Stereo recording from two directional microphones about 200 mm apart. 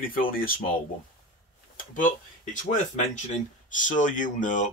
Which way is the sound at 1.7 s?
40° left (ahead or behind).